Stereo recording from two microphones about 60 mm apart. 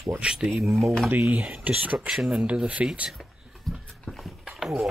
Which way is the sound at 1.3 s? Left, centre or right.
Right.